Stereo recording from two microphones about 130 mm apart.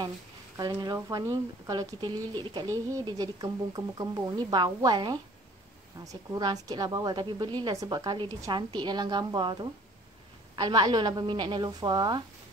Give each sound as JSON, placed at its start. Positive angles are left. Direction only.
{"t": 0.6, "sound": "a woman's voice", "side_deg": -30}